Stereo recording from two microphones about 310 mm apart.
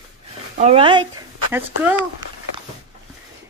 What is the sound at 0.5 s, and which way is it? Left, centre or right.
Speech, centre.